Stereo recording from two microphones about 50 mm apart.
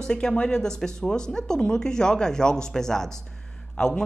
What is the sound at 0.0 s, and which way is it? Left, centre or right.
Speech, centre.